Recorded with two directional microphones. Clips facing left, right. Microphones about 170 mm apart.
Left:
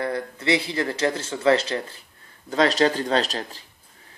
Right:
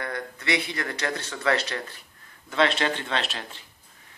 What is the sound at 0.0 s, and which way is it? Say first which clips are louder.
Speech: left 6 dB; 30° left (ahead or behind).